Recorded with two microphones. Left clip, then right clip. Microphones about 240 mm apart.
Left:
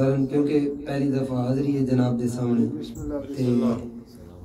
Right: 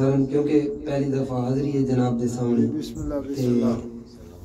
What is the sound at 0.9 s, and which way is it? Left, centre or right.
A man's voice, left.